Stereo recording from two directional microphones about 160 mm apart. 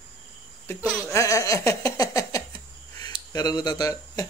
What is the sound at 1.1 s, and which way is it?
Speech, 20° left (ahead or behind).